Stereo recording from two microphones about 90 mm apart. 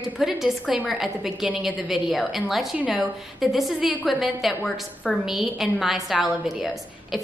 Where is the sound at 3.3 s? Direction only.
Centre (ahead or behind).